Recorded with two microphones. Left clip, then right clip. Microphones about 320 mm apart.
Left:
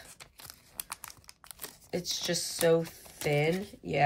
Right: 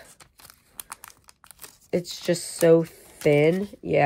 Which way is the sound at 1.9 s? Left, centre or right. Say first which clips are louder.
Right 7 dB; right.